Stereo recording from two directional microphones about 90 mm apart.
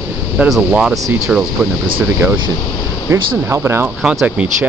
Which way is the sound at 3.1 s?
30° right (ahead or behind).